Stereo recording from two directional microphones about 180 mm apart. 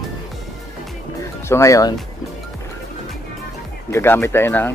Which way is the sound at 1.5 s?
15° left (ahead or behind).